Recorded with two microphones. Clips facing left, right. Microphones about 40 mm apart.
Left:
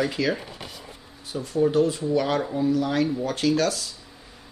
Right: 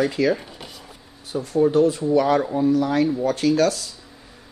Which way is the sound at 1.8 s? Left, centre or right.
Right.